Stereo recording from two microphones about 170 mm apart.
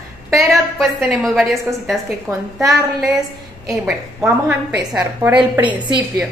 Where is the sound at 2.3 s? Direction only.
15° right (ahead or behind).